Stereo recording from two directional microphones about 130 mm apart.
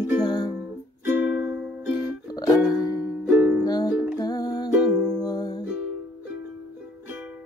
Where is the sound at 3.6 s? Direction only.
30° left (ahead or behind).